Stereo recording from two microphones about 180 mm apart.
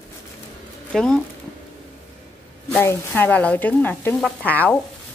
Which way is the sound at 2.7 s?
10° left (ahead or behind).